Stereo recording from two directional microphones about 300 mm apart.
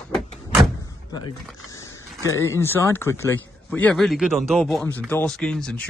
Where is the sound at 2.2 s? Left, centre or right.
Centre.